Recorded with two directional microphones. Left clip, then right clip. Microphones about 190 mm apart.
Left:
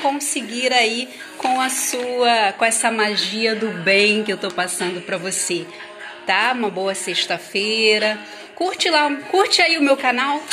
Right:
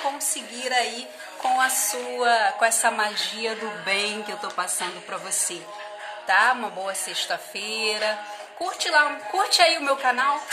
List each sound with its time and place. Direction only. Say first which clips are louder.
0.3 s a woman's voice: left 7 dB; 5° left (ahead or behind)